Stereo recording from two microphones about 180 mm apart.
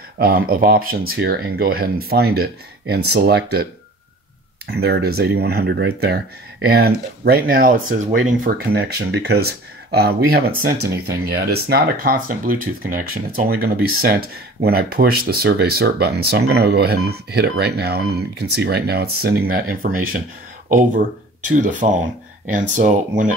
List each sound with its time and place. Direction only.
0.2 s speech: 55° right (ahead or behind)
4.7 s speech: 60° right (ahead or behind); by 23.3 s 45° right (ahead or behind)